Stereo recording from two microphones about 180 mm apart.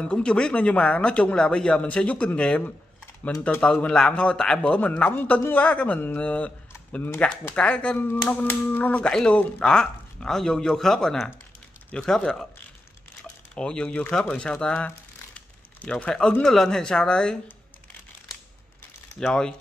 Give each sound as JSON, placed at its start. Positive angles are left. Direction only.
{"t": 0.0, "sound": "speech", "side_deg": 5}
{"t": 13.6, "sound": "speech", "side_deg": 5}
{"t": 19.1, "sound": "speech", "side_deg": 5}